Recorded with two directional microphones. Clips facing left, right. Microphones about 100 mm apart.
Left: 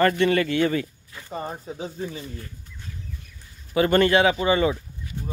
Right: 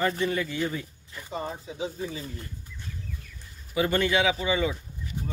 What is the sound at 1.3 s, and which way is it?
Speech, 50° left (ahead or behind).